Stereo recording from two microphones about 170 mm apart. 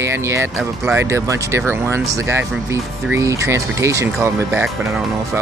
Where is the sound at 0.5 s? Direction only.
5° right (ahead or behind).